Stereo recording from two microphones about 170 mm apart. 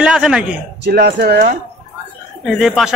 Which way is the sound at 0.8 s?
70° right (ahead or behind).